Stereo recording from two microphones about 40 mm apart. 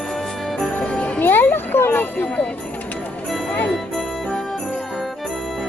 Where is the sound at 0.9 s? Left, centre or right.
Left.